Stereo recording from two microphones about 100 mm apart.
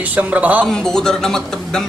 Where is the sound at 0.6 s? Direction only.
5° left (ahead or behind).